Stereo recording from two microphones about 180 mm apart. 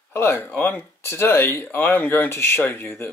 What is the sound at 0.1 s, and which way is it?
Speech, 15° left (ahead or behind).